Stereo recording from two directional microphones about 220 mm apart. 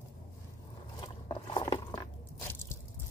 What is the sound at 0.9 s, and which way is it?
Biting, 20° left (ahead or behind).